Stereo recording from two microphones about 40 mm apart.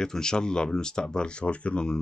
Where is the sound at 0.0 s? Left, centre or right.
Centre.